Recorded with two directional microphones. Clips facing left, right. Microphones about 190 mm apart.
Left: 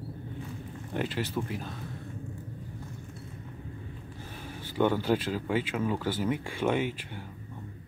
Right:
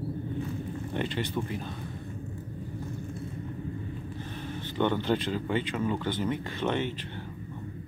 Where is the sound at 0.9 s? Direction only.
5° left (ahead or behind).